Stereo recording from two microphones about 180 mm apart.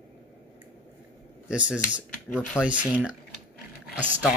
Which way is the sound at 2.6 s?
5° right (ahead or behind).